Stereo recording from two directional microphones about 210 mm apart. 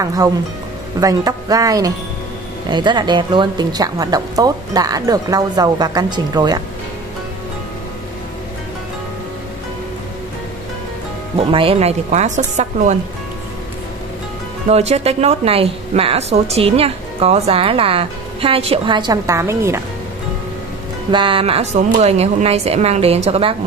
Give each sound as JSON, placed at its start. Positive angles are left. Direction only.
{"t": 0.0, "sound": "a woman's voice", "side_deg": -15}
{"t": 11.3, "sound": "a woman's voice", "side_deg": -25}
{"t": 14.7, "sound": "a woman's voice", "side_deg": -30}
{"t": 21.1, "sound": "a woman's voice", "side_deg": -25}